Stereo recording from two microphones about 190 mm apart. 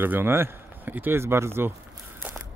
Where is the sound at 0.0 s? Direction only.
10° right (ahead or behind).